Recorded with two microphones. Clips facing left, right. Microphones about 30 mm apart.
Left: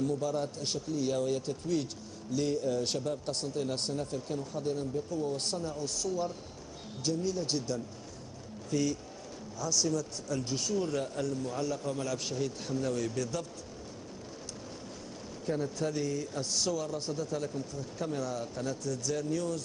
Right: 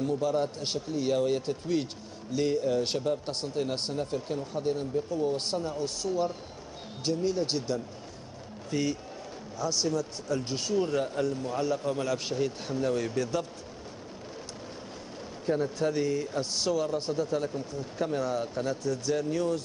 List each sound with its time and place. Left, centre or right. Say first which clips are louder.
0.0 s speech: right 4 dB; right
15.4 s speech: right 5 dB; right